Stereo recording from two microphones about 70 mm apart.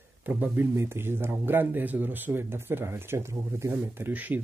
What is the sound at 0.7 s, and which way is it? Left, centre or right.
Speech, right.